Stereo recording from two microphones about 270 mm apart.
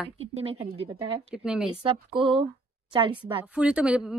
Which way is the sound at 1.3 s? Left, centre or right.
Centre.